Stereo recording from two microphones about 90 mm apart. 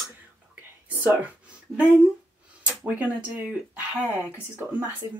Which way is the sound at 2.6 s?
15° right (ahead or behind).